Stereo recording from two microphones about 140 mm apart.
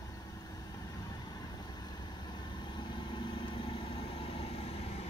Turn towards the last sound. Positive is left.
turn(degrees=50)  # may be behind; listen again after turning